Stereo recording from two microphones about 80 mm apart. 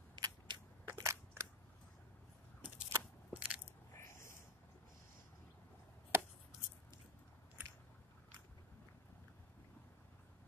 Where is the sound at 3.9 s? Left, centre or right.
Left.